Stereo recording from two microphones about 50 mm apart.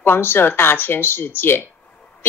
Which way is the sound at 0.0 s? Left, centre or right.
Left.